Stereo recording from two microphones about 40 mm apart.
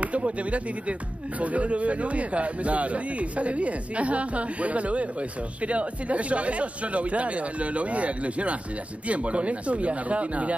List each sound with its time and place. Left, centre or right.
0.0 s speech: right